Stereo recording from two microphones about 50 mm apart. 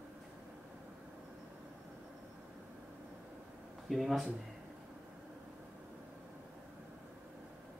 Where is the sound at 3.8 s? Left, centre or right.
Centre.